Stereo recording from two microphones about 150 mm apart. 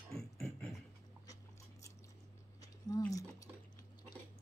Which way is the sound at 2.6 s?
25° left (ahead or behind).